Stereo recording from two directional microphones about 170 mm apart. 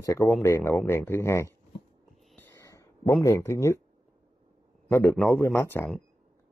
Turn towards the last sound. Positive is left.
turn(degrees=15)  # may be behind; listen again after turning